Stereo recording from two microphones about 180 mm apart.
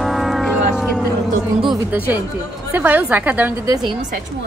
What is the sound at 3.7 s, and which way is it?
Speech, 20° right (ahead or behind).